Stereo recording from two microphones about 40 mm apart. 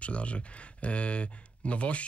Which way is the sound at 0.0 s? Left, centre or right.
Left.